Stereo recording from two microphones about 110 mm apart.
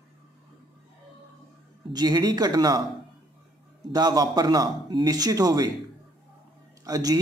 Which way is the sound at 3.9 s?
40° right (ahead or behind).